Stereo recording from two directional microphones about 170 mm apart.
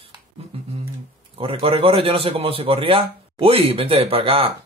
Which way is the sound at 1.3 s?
35° right (ahead or behind).